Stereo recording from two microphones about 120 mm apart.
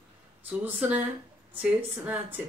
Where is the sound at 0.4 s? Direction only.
15° right (ahead or behind).